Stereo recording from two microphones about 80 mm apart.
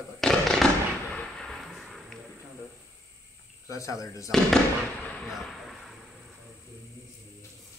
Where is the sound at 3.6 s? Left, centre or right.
Left.